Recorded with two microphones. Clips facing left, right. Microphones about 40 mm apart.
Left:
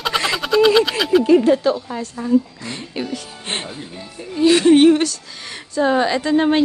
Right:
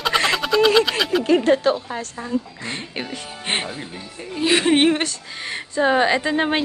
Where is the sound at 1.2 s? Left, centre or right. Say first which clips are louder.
Left 1 dB; right.